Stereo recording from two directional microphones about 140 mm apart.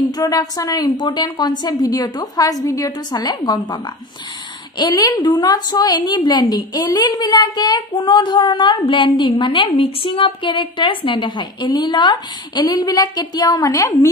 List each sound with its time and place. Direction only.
0.1 s a woman's voice: 25° left (ahead or behind)